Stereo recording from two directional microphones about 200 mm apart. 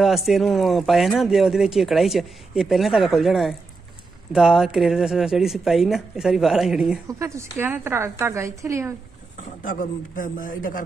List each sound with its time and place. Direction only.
0.0 s speech: centre (ahead or behind)
7.1 s a woman's voice: 15° right (ahead or behind)
9.6 s a man's voice: 45° left (ahead or behind)